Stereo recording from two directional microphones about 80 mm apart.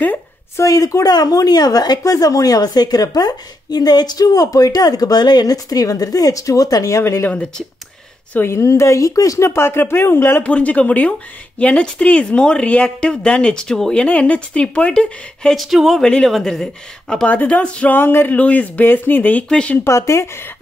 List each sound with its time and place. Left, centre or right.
0.6 s speech: left
8.3 s speech: left
8.5 s speech: left
9.5 s speech: left
10.4 s speech: centre
17.3 s speech: centre
19.8 s speech: left